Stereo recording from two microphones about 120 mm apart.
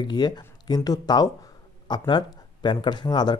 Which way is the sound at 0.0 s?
40° left (ahead or behind).